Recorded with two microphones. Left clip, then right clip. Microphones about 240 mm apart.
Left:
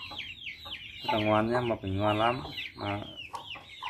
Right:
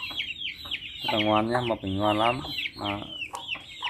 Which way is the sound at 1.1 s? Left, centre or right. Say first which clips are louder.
Right 3 dB; centre.